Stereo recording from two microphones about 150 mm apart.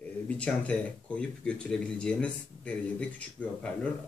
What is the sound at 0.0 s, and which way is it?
Speech, 10° left (ahead or behind).